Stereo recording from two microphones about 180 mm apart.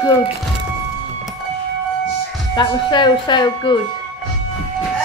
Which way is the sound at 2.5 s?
25° left (ahead or behind).